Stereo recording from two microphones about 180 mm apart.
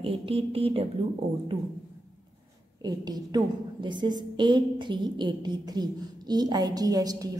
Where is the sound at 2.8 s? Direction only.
20° right (ahead or behind).